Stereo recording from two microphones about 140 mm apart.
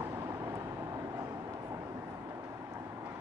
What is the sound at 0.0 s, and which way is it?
Vehicle, 20° right (ahead or behind).